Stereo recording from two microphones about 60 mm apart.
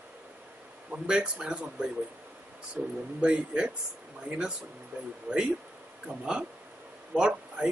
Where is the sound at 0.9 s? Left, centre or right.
Centre.